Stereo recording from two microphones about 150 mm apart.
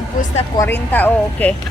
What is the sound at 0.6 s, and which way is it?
Speech, 15° left (ahead or behind).